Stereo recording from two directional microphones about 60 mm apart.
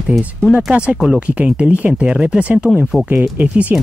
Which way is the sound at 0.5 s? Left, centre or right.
Centre.